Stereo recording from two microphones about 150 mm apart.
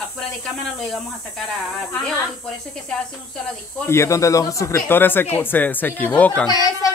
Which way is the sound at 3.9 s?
20° left (ahead or behind).